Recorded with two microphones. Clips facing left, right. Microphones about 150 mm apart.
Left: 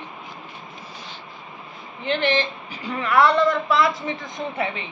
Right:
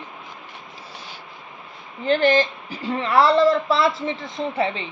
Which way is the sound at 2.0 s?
40° right (ahead or behind).